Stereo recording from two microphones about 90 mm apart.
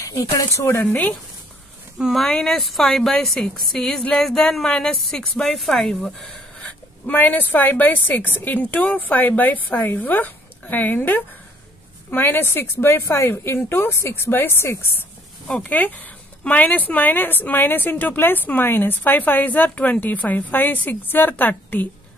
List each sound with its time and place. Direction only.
0.0 s speech: 35° left (ahead or behind)
2.0 s speech: 5° right (ahead or behind)
2.2 s a woman's voice: 5° left (ahead or behind)
6.6 s speech: 20° left (ahead or behind)
15.4 s speech: 15° left (ahead or behind)